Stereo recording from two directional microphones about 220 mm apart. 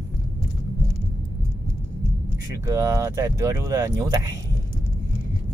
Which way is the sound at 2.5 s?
15° right (ahead or behind).